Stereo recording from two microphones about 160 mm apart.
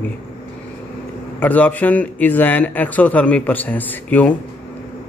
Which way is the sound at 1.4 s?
10° left (ahead or behind).